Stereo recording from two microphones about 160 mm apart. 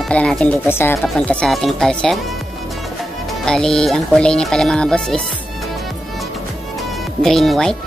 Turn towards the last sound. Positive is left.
turn(degrees=0)  # may be behind; listen again after turning